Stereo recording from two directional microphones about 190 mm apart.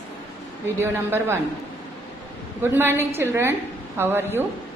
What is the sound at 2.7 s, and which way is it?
A woman's voice, 10° right (ahead or behind).